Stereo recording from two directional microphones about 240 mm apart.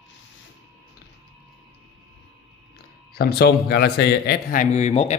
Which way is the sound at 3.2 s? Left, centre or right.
Left.